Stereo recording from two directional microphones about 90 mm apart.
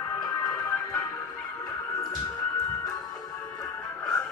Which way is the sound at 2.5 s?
45° left (ahead or behind).